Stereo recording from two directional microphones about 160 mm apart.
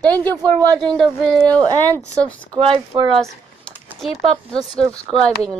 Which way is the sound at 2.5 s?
35° right (ahead or behind).